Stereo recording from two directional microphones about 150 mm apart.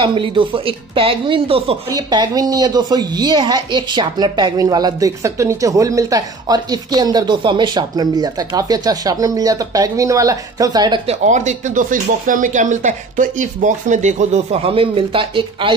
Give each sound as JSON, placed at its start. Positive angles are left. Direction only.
{"t": 0.0, "sound": "speech", "side_deg": -35}
{"t": 1.9, "sound": "a woman's voice", "side_deg": -25}
{"t": 11.1, "sound": "speech", "side_deg": -55}